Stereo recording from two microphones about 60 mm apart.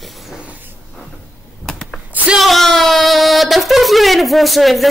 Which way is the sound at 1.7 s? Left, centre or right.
Centre.